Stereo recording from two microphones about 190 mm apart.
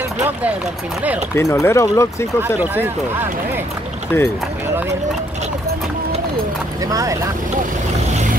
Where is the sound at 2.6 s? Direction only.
10° right (ahead or behind).